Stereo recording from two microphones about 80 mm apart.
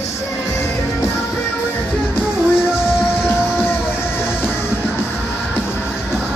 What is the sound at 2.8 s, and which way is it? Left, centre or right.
Music, left.